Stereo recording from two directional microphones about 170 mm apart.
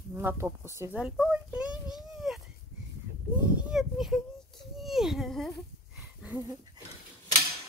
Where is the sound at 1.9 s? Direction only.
Centre (ahead or behind).